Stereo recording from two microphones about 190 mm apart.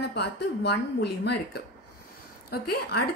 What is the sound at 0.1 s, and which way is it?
A woman's voice, 60° left (ahead or behind).